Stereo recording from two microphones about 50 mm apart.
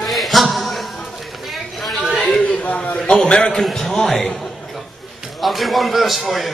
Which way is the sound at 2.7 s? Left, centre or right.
Left.